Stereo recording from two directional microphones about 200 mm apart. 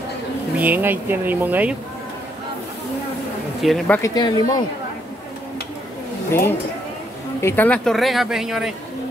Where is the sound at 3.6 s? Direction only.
5° left (ahead or behind).